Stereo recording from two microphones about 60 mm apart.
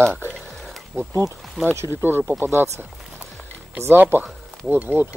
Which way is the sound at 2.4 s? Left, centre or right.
Right.